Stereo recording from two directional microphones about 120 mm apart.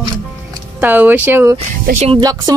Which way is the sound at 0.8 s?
15° right (ahead or behind).